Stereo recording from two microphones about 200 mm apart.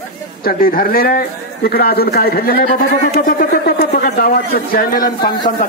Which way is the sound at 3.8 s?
45° left (ahead or behind).